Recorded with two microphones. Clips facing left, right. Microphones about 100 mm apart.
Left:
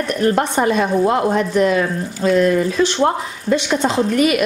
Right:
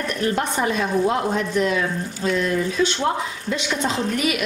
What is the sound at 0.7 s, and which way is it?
A woman's voice, 55° left (ahead or behind).